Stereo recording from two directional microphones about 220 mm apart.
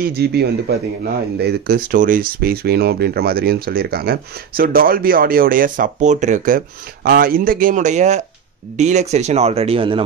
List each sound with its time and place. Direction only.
0.0 s speech: 45° right (ahead or behind); by 10.0 s 25° right (ahead or behind)